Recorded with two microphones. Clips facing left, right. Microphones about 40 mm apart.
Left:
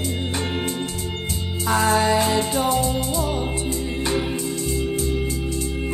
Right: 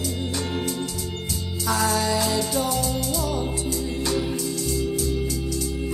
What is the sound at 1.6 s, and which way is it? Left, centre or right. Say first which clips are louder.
Music: left 4 dB; left.